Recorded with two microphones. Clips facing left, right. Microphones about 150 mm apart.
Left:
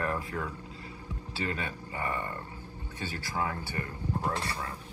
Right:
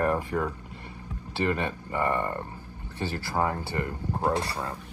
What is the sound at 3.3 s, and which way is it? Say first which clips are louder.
Speech: right 6 dB; 45° right (ahead or behind).